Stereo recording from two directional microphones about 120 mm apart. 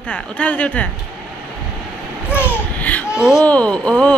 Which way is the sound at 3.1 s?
5° right (ahead or behind).